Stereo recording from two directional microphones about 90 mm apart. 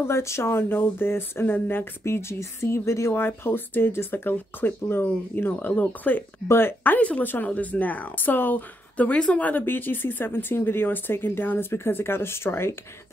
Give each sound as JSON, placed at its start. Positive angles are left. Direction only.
{"t": 0.0, "sound": "speech", "side_deg": 30}